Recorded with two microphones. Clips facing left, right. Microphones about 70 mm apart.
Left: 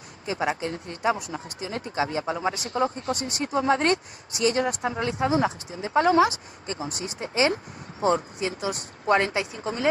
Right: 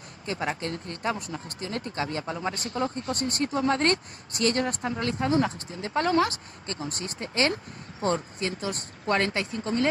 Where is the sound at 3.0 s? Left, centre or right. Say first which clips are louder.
Even; right.